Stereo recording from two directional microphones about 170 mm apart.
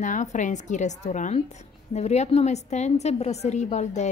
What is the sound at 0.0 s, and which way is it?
A woman's voice, 45° left (ahead or behind).